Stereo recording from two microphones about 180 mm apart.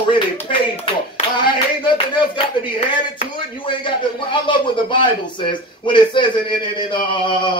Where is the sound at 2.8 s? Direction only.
30° left (ahead or behind).